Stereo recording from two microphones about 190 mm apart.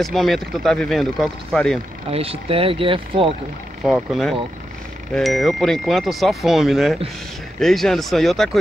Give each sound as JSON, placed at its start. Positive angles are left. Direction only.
{"t": 0.0, "sound": "speech", "side_deg": 0}
{"t": 2.0, "sound": "speech", "side_deg": -30}
{"t": 3.8, "sound": "speech", "side_deg": 0}